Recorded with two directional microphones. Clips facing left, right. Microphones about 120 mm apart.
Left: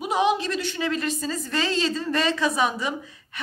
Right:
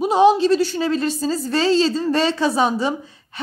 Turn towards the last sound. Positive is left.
turn(degrees=-30)  # may be behind; listen again after turning